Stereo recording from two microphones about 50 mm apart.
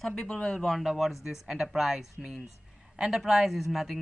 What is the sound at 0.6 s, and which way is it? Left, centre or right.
Speech, centre.